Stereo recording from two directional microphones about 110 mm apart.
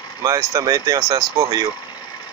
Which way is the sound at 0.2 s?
30° right (ahead or behind).